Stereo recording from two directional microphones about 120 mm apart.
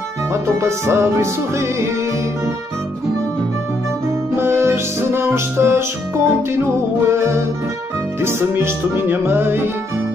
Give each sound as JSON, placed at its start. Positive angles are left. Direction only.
{"t": 0.3, "sound": "music", "side_deg": -20}
{"t": 4.4, "sound": "music", "side_deg": -20}